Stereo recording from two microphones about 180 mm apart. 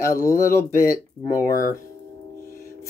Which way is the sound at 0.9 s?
50° left (ahead or behind).